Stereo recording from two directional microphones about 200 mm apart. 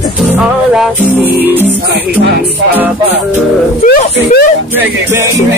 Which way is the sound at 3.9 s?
50° left (ahead or behind).